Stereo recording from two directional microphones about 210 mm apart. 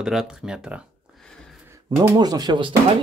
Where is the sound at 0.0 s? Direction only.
Centre (ahead or behind).